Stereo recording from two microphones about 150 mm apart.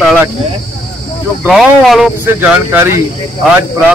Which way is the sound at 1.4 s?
5° right (ahead or behind).